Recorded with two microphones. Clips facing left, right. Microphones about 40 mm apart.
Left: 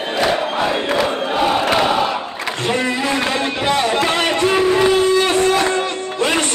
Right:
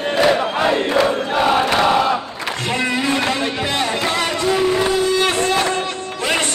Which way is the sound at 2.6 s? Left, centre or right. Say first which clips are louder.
Left 2 dB; left.